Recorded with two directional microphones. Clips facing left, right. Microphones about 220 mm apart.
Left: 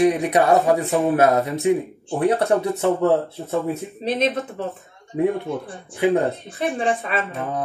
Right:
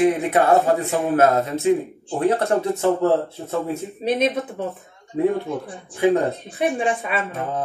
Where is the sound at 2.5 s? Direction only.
30° right (ahead or behind).